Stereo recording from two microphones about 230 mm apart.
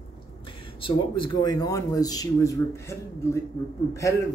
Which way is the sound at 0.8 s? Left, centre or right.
Left.